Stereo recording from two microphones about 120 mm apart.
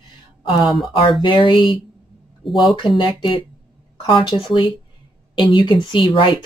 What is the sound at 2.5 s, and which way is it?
Speech, centre (ahead or behind).